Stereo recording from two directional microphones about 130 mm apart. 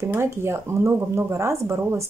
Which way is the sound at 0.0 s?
20° right (ahead or behind).